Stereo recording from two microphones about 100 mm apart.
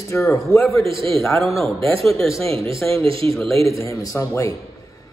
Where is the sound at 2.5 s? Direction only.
70° right (ahead or behind).